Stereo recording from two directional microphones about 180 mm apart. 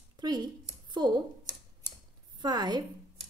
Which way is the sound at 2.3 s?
25° right (ahead or behind).